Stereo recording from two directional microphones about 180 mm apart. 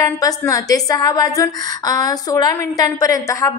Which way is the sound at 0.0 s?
20° left (ahead or behind).